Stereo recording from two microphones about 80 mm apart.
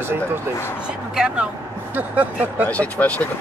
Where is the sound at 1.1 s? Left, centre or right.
Centre.